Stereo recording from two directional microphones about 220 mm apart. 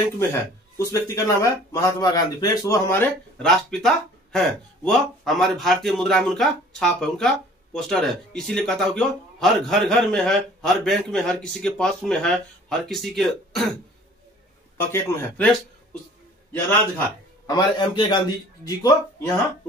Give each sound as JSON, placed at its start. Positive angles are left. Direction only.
{"t": 0.7, "sound": "speech", "side_deg": 15}
{"t": 14.8, "sound": "a man's voice", "side_deg": 10}
{"t": 17.5, "sound": "a man's voice", "side_deg": 20}